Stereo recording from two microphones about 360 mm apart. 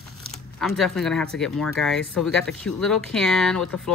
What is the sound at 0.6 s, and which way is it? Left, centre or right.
Speech, centre.